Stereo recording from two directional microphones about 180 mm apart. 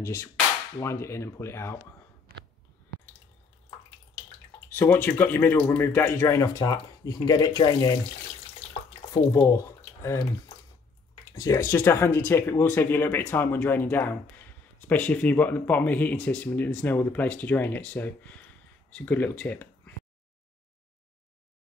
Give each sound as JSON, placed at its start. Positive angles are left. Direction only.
{"t": 0.0, "sound": "speech", "side_deg": 15}
{"t": 4.6, "sound": "speech", "side_deg": 10}
{"t": 9.1, "sound": "speech", "side_deg": 20}
{"t": 11.3, "sound": "speech", "side_deg": 20}